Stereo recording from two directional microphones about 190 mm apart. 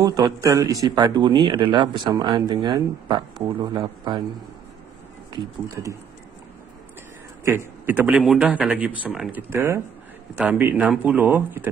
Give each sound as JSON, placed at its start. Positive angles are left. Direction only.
{"t": 0.0, "sound": "speech", "side_deg": -20}
{"t": 7.4, "sound": "speech", "side_deg": -10}